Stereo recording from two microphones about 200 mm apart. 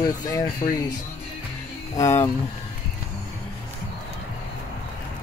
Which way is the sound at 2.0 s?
10° left (ahead or behind).